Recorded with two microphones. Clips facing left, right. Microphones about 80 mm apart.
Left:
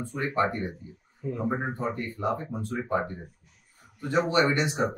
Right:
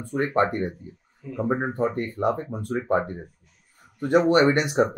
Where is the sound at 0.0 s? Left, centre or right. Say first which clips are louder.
Right 4 dB; right.